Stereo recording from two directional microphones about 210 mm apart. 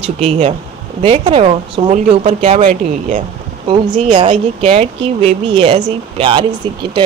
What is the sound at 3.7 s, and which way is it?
Speech, 25° right (ahead or behind).